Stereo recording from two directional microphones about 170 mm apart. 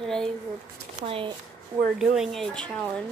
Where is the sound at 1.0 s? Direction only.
30° right (ahead or behind).